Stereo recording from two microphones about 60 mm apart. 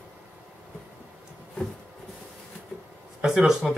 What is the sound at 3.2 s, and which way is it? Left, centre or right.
Speech, centre.